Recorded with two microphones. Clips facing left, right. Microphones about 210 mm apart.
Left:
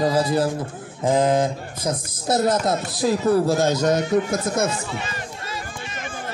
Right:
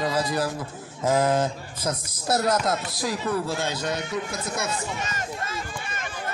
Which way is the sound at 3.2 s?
40° left (ahead or behind).